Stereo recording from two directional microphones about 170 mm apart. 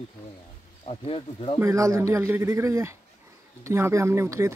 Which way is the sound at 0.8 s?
35° left (ahead or behind).